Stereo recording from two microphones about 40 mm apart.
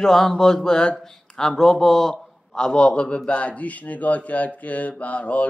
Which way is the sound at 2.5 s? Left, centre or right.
Centre.